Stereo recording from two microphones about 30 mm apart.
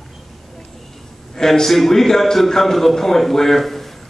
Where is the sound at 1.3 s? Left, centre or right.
Centre.